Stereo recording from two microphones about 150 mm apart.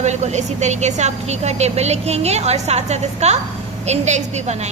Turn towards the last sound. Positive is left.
turn(degrees=-50)  # may be behind; listen again after turning